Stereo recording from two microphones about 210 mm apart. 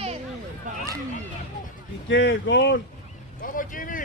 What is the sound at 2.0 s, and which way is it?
Speech, 60° left (ahead or behind).